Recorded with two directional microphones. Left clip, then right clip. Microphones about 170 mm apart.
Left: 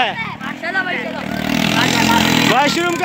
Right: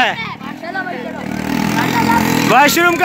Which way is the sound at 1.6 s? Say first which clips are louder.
Left 1 dB; 55° left (ahead or behind).